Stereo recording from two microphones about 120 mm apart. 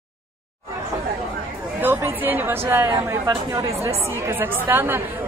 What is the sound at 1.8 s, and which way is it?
Speech, 15° right (ahead or behind).